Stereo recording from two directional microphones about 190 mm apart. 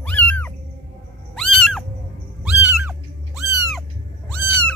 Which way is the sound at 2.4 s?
5° right (ahead or behind).